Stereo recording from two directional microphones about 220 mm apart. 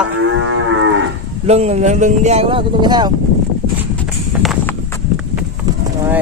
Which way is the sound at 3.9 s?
5° left (ahead or behind).